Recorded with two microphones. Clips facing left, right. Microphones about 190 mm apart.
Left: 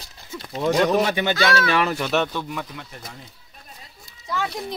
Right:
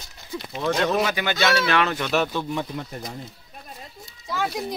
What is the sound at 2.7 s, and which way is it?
Speech, 35° right (ahead or behind).